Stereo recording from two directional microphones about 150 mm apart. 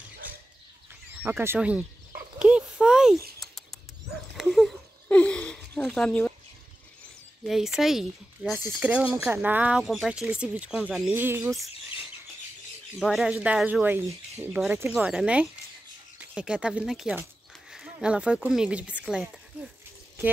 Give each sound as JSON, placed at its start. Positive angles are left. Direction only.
{"t": 1.2, "sound": "speech", "side_deg": -15}
{"t": 2.3, "sound": "a sound", "side_deg": -5}
{"t": 3.3, "sound": "bird", "side_deg": 0}
{"t": 4.4, "sound": "a sound", "side_deg": 0}
{"t": 7.4, "sound": "speech", "side_deg": 0}
{"t": 13.0, "sound": "speech", "side_deg": -5}
{"t": 15.0, "sound": "speech", "side_deg": -5}